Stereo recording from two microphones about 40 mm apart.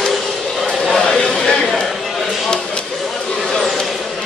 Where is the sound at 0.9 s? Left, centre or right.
Centre.